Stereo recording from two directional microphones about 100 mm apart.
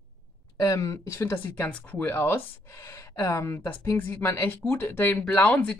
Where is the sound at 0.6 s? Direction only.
35° left (ahead or behind).